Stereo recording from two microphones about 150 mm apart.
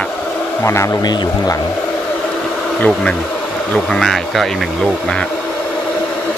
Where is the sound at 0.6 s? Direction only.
20° left (ahead or behind).